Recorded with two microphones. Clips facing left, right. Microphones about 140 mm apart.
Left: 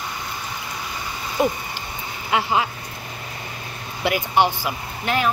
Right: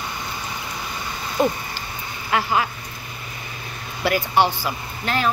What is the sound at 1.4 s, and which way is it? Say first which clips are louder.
Speech: right 1 dB; 5° left (ahead or behind).